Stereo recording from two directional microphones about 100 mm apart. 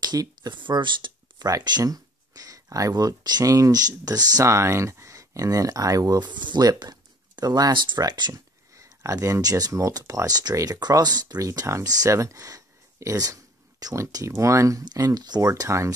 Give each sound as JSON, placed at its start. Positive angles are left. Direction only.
{"t": 0.0, "sound": "speech", "side_deg": -45}